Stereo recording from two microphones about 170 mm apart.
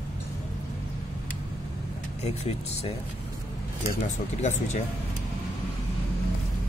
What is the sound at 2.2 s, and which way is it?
Speech, 35° left (ahead or behind).